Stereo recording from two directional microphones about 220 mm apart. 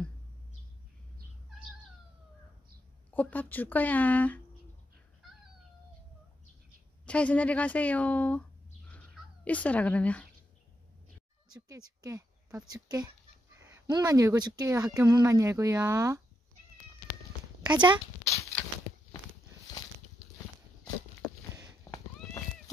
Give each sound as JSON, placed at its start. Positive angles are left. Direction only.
{"t": 3.1, "sound": "a woman's voice", "side_deg": 5}
{"t": 7.1, "sound": "a woman's voice", "side_deg": 5}
{"t": 8.9, "sound": "a sound", "side_deg": 5}
{"t": 11.5, "sound": "speech", "side_deg": -15}
{"t": 17.7, "sound": "speech", "side_deg": -20}
{"t": 18.2, "sound": "a sound", "side_deg": 15}